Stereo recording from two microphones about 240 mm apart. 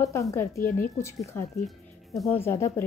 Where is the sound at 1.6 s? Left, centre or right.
Centre.